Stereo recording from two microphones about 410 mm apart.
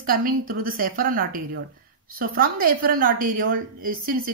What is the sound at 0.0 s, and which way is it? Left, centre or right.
Speech, right.